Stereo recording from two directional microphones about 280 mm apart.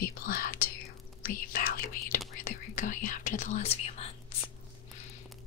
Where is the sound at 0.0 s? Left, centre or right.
Left.